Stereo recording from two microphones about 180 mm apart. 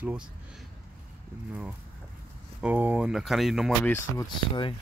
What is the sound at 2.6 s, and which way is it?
Speech, 10° right (ahead or behind).